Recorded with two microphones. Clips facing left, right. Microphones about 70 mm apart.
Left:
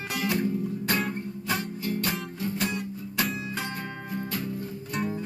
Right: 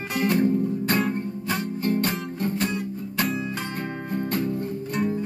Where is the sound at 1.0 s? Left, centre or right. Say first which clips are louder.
Right 5 dB; centre.